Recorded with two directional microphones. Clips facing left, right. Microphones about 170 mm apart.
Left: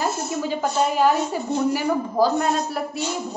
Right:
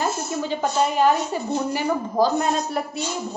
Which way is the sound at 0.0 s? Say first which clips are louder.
Even; 5° left (ahead or behind).